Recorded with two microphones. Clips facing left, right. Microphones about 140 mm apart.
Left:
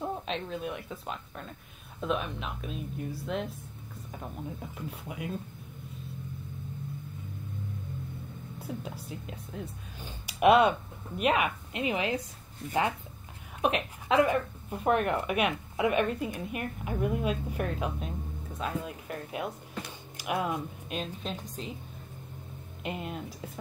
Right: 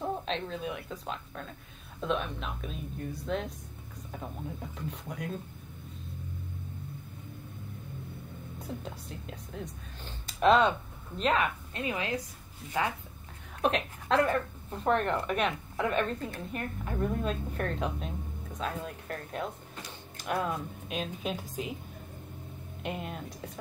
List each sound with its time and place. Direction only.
0.2 s speech: 5° left (ahead or behind)
8.5 s speech: 5° left (ahead or behind); by 12.2 s 20° left (ahead or behind)
13.6 s speech: 5° left (ahead or behind)
22.8 s speech: centre (ahead or behind)